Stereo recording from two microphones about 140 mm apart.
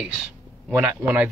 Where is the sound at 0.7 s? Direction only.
10° right (ahead or behind).